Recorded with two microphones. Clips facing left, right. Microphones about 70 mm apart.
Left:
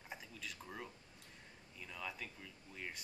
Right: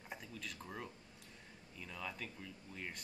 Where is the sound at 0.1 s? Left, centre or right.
Centre.